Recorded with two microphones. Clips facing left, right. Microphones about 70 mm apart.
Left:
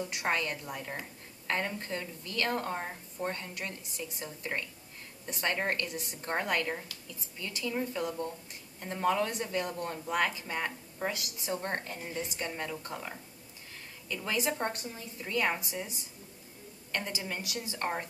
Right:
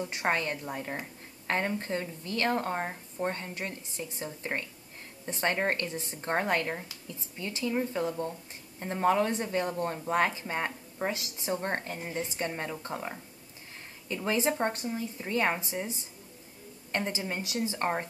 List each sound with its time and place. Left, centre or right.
0.1 s speech: right